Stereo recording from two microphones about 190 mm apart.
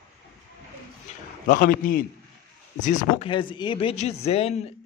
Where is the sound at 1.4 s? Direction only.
50° left (ahead or behind).